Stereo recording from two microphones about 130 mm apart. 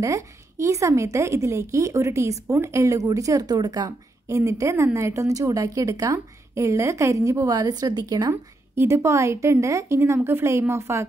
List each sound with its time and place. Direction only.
0.0 s a woman's voice: 25° right (ahead or behind)